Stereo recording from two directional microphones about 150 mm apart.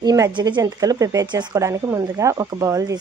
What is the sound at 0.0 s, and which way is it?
Speech, 25° right (ahead or behind).